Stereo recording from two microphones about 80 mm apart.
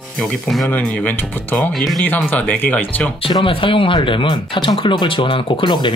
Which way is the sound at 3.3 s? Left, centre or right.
Left.